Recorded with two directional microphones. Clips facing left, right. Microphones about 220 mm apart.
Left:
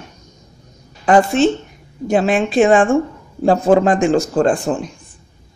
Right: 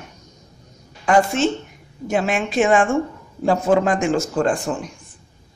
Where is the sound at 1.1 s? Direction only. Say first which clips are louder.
Left 4 dB; 35° left (ahead or behind).